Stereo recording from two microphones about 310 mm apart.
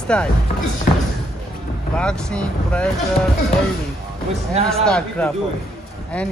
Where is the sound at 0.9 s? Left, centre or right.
Left.